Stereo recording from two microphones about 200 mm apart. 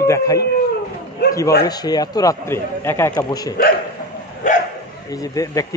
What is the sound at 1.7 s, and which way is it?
A man's voice, 20° left (ahead or behind).